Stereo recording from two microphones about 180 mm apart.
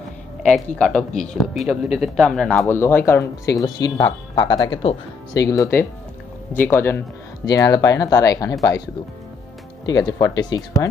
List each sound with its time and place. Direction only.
0.4 s speech: 5° left (ahead or behind)
9.8 s speech: 20° left (ahead or behind)